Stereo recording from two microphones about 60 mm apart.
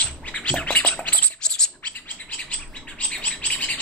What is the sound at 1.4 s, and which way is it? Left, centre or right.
Bird, centre.